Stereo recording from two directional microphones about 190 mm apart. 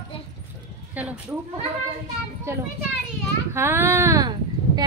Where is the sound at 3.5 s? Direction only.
10° right (ahead or behind).